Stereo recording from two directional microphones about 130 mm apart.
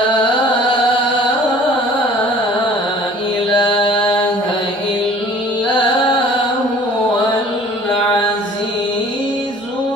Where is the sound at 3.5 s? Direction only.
35° left (ahead or behind).